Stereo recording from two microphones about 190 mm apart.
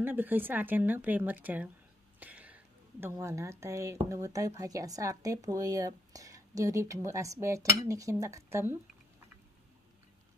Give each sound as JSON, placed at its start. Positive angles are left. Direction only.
{"t": 0.0, "sound": "a woman's voice", "side_deg": -10}
{"t": 2.1, "sound": "a sound", "side_deg": -10}
{"t": 4.1, "sound": "a woman's voice", "side_deg": -15}